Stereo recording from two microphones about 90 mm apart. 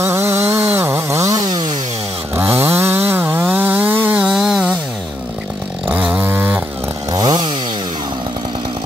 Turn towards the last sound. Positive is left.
turn(degrees=-50)  # may be behind; listen again after turning